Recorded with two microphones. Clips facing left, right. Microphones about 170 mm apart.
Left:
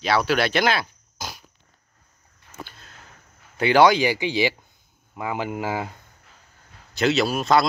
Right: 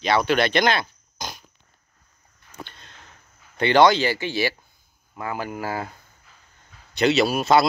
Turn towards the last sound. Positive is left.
turn(degrees=0)  # may be behind; listen again after turning